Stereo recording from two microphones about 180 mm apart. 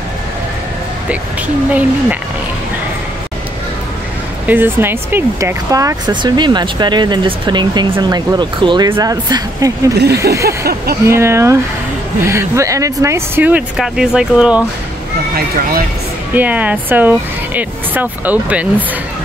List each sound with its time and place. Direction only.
1.7 s speech: 10° right (ahead or behind)
4.5 s speech: 10° right (ahead or behind)
10.6 s speech: 60° right (ahead or behind)
11.1 s speech: 15° right (ahead or behind)
16.3 s speech: 10° right (ahead or behind)